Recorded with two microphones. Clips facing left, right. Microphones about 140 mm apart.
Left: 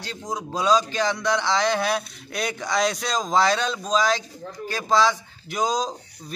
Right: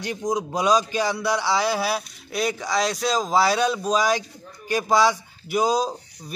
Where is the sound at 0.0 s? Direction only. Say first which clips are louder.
Right 6 dB; 15° right (ahead or behind).